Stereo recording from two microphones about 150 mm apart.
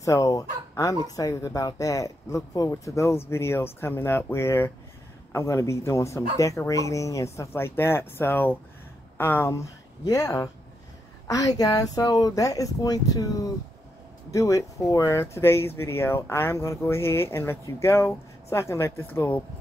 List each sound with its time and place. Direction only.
0.0 s speech: 20° left (ahead or behind)